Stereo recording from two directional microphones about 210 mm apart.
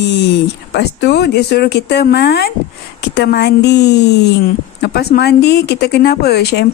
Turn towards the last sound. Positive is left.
turn(degrees=50)  # may be behind; listen again after turning